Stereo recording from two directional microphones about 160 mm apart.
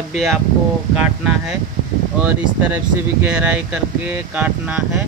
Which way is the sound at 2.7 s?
10° right (ahead or behind).